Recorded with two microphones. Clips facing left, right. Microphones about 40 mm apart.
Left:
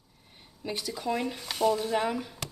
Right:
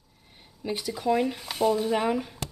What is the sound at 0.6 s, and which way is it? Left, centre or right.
Speech, centre.